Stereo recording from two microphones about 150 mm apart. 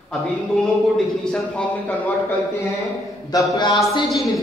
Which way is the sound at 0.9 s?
5° left (ahead or behind).